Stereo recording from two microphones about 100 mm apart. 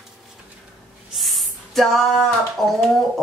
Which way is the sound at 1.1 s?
Centre (ahead or behind).